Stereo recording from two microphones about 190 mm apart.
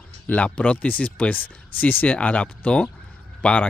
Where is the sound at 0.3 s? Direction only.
5° left (ahead or behind).